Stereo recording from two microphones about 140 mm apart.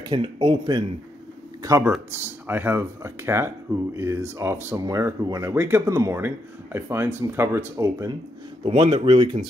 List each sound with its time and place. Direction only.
0.0 s speech: 35° right (ahead or behind)
1.6 s speech: 25° right (ahead or behind)
8.6 s speech: 45° right (ahead or behind)